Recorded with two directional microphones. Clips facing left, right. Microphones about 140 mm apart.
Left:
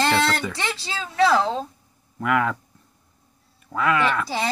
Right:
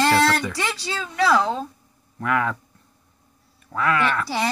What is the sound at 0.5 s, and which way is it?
Speech, 25° left (ahead or behind).